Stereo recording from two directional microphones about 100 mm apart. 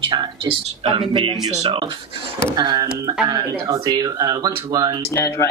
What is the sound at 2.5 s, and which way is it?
Speech, 40° right (ahead or behind).